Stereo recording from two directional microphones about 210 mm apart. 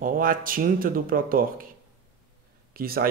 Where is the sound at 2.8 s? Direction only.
45° right (ahead or behind).